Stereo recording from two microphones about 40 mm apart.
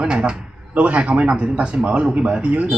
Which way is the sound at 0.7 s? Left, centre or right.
Right.